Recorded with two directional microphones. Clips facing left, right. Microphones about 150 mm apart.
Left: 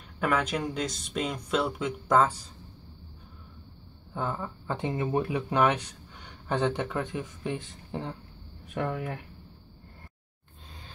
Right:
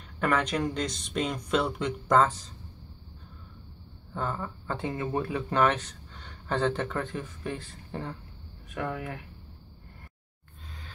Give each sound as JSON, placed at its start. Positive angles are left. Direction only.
{"t": 0.2, "sound": "speech", "side_deg": 5}
{"t": 4.1, "sound": "speech", "side_deg": 15}